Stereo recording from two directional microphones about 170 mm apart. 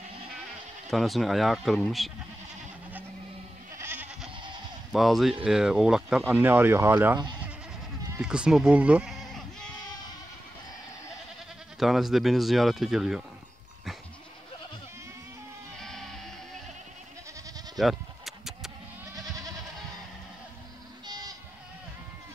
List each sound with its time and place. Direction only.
0.8 s speech: centre (ahead or behind)
3.7 s goat: 10° right (ahead or behind)
4.9 s speech: centre (ahead or behind)
8.2 s sheep: 5° right (ahead or behind)
11.8 s speech: centre (ahead or behind)
15.8 s music: 5° left (ahead or behind)
17.7 s bleat: centre (ahead or behind)
19.1 s goat: 20° right (ahead or behind)
21.1 s sheep: 20° right (ahead or behind)